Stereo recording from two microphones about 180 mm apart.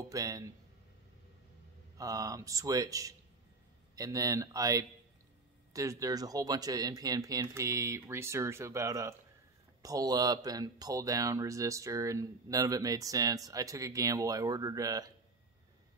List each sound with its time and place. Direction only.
0.1 s speech: 20° right (ahead or behind)
2.0 s speech: 20° right (ahead or behind)